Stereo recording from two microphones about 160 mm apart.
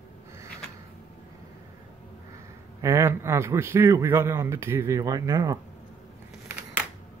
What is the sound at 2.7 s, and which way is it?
A man's voice, 20° right (ahead or behind).